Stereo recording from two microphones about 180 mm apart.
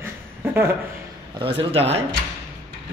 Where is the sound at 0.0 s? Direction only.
15° right (ahead or behind).